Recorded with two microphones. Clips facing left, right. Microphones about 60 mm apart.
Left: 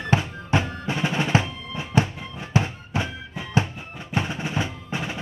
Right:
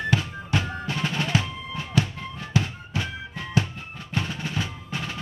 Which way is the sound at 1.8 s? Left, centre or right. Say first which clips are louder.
Left 3 dB; left.